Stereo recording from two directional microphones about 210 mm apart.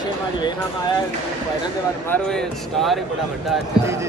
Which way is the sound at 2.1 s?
Centre (ahead or behind).